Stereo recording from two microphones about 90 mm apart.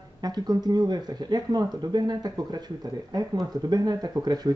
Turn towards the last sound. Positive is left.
turn(degrees=-50)  # may be behind; listen again after turning